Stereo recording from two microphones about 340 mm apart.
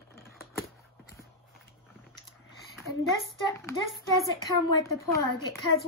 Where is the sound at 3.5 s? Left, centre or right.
Centre.